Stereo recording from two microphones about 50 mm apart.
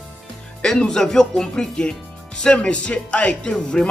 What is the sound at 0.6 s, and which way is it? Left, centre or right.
Speech, centre.